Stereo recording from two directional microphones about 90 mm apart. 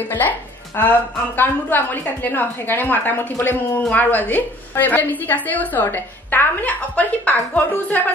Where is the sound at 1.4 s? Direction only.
20° left (ahead or behind).